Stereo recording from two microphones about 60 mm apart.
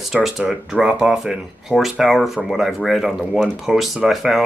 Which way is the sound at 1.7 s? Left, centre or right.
Left.